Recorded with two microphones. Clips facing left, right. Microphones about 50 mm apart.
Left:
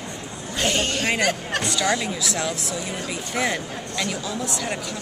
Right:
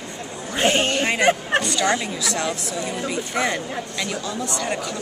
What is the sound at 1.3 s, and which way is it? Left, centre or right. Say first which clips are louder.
Speech: right 7 dB; right.